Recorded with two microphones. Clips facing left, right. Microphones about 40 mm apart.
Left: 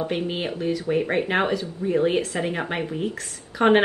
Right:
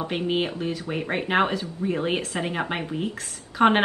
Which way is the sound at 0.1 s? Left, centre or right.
Centre.